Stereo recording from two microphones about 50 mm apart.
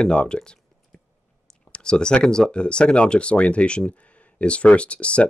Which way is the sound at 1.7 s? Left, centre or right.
Centre.